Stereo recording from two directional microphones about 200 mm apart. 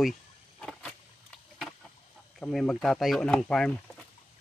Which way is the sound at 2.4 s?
5° left (ahead or behind).